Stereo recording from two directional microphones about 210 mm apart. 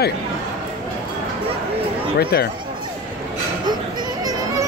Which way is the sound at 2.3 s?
50° left (ahead or behind).